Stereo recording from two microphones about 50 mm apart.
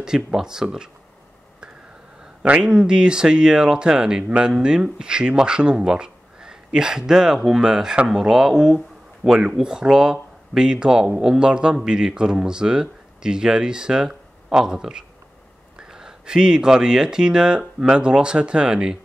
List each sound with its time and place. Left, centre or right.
0.0 s speech: centre
2.4 s speech: right